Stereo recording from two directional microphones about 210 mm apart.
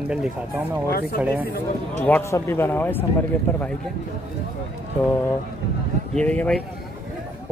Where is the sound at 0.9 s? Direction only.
45° left (ahead or behind).